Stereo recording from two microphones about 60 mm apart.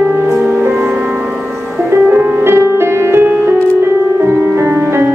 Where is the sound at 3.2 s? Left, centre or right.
Right.